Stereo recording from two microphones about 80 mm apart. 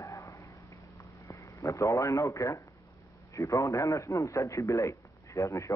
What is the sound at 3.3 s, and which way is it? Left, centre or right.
A man's voice, left.